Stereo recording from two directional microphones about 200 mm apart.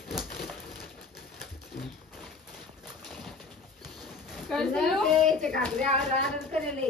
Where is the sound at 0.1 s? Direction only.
Centre (ahead or behind).